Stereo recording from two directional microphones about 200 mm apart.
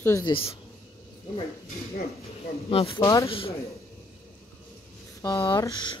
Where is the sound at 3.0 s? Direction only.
15° left (ahead or behind).